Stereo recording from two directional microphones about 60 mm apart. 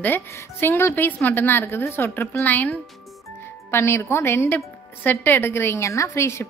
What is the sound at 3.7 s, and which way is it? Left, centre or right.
A woman's voice, left.